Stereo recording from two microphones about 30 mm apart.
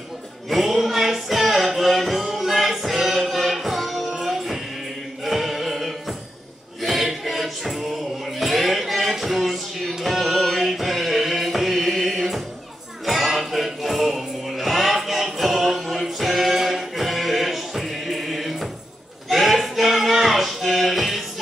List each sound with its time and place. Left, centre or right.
0.5 s music: centre
5.2 s chant: centre
5.8 s music: centre